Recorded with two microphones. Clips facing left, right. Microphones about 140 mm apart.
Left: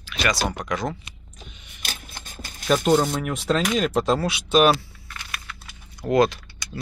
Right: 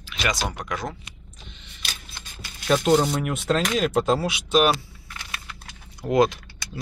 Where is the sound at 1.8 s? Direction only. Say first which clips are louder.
Left 3 dB; 45° left (ahead or behind).